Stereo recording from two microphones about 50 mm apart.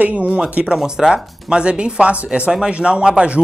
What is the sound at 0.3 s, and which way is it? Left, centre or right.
Speech, right.